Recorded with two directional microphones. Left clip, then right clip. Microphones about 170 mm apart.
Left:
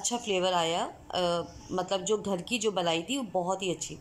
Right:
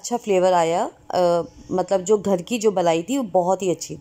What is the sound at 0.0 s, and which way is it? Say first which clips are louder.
Speech: right 10 dB; 30° right (ahead or behind).